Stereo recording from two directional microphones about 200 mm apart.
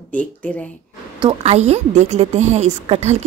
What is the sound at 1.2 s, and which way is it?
A woman's voice, 30° right (ahead or behind).